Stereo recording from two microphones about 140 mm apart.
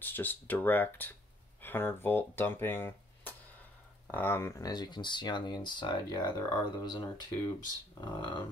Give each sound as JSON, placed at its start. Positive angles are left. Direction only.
{"t": 0.0, "sound": "speech", "side_deg": 15}